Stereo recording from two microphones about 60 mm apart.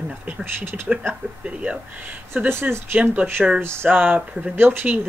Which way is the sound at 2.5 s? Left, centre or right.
Right.